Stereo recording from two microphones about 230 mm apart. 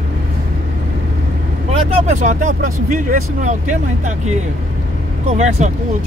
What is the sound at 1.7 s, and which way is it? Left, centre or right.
Vehicle, right.